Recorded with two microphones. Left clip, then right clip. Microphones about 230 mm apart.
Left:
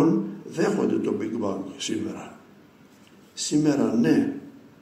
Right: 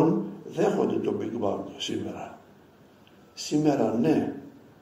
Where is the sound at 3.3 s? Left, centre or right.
Left.